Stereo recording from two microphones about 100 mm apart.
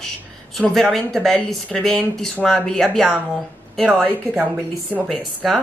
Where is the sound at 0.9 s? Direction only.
5° left (ahead or behind).